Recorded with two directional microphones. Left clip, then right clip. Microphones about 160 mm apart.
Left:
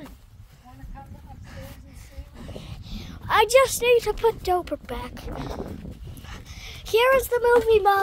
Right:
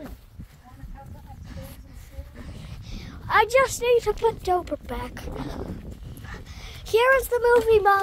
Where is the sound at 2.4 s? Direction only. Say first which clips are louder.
Left 9 dB; 10° left (ahead or behind).